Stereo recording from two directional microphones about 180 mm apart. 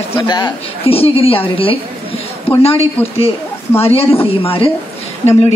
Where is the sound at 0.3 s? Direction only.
30° left (ahead or behind).